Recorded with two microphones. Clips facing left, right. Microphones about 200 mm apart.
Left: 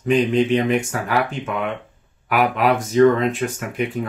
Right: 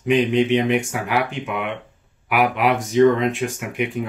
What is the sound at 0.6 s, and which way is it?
Speech, 15° right (ahead or behind).